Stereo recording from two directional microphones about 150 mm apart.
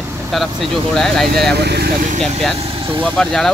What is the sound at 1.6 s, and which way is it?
Speech, 90° right.